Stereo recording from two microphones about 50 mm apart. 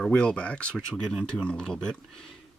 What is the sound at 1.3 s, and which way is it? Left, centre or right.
Speech, centre.